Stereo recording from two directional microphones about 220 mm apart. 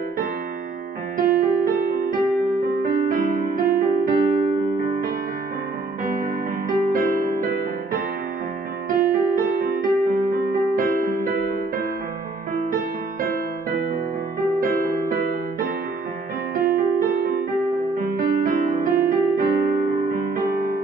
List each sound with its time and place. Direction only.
1.1 s music: 40° right (ahead or behind)
6.7 s music: 40° right (ahead or behind)
12.5 s music: 40° right (ahead or behind)